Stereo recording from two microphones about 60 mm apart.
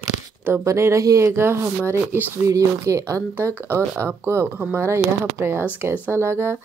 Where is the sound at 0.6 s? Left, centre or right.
Right.